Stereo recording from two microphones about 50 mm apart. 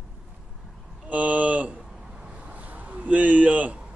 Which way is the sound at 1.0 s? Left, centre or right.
Right.